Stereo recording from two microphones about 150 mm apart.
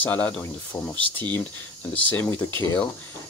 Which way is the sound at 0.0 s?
10° left (ahead or behind).